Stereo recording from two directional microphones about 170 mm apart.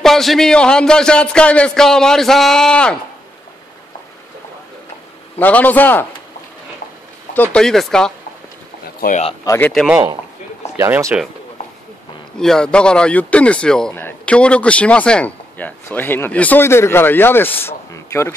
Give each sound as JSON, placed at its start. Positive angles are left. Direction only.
{"t": 0.0, "sound": "a man's voice", "side_deg": 0}
{"t": 5.4, "sound": "speech", "side_deg": 10}
{"t": 7.5, "sound": "a man's voice", "side_deg": 0}
{"t": 8.8, "sound": "a sound", "side_deg": 55}
{"t": 9.4, "sound": "speech", "side_deg": 20}
{"t": 9.7, "sound": "a man's voice", "side_deg": -5}
{"t": 10.8, "sound": "speech", "side_deg": -15}
{"t": 12.4, "sound": "speech", "side_deg": 5}